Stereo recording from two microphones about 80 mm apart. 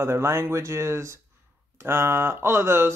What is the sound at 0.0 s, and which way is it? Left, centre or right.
Speech, right.